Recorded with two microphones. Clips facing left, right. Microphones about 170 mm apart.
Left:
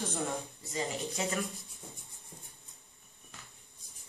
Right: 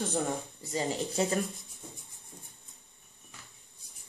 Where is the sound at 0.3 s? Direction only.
35° right (ahead or behind).